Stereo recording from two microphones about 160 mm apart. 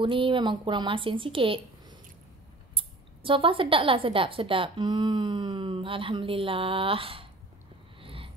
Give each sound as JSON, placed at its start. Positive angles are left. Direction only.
{"t": 0.0, "sound": "a woman's voice", "side_deg": -30}
{"t": 3.3, "sound": "a woman's voice", "side_deg": -35}
{"t": 8.0, "sound": "a sound", "side_deg": -35}